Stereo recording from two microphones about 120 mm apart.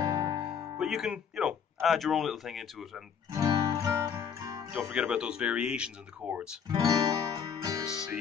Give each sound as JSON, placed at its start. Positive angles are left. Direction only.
{"t": 0.0, "sound": "music", "side_deg": -30}
{"t": 0.7, "sound": "speech", "side_deg": -5}
{"t": 3.3, "sound": "music", "side_deg": -30}
{"t": 4.7, "sound": "speech", "side_deg": -10}
{"t": 6.7, "sound": "music", "side_deg": -30}
{"t": 7.8, "sound": "music", "side_deg": -5}